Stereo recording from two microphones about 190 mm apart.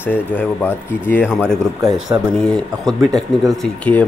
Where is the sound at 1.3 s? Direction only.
5° right (ahead or behind).